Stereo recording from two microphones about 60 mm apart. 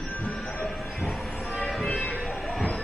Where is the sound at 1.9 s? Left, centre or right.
Centre.